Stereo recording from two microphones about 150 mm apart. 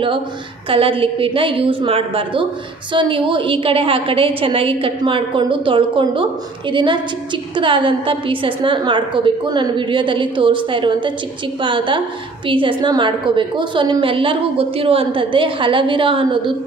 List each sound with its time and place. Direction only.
0.7 s a woman's voice: 35° right (ahead or behind)